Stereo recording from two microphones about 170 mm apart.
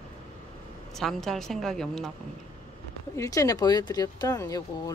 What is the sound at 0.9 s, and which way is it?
Speech, centre (ahead or behind).